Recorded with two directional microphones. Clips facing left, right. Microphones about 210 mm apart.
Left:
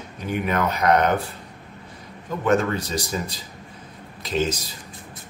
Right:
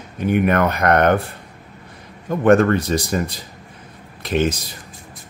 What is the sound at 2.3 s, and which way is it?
Speech, 55° right (ahead or behind).